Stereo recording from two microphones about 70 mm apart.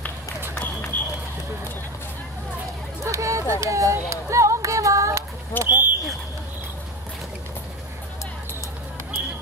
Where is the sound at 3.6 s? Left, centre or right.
Right.